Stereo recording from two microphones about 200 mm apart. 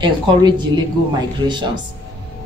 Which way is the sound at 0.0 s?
20° right (ahead or behind).